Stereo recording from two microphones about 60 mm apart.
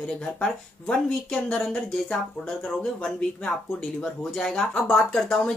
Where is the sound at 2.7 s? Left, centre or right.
Centre.